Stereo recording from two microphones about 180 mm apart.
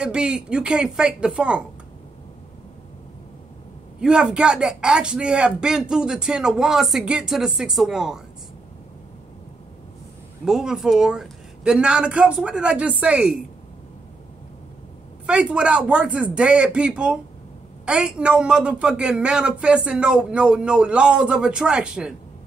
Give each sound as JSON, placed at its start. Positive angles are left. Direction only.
{"t": 0.0, "sound": "a woman's voice", "side_deg": -5}
{"t": 4.0, "sound": "a woman's voice", "side_deg": -5}
{"t": 10.4, "sound": "a woman's voice", "side_deg": -5}
{"t": 15.2, "sound": "a woman's voice", "side_deg": -5}